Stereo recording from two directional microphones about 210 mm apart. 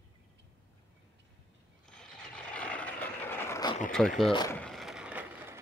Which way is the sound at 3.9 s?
Centre (ahead or behind).